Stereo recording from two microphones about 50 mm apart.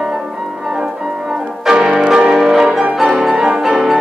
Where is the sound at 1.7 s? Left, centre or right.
Centre.